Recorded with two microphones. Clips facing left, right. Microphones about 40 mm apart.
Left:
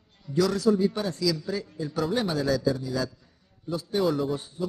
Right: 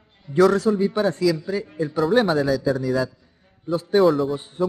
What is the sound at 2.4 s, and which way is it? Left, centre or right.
Speech, centre.